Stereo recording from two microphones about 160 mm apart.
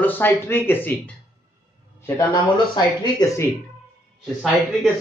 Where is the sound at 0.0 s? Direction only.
10° left (ahead or behind).